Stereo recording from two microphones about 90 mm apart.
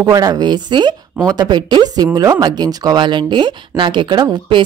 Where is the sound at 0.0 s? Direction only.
40° right (ahead or behind).